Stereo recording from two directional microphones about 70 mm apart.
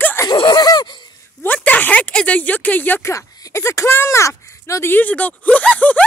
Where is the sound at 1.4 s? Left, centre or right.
Left.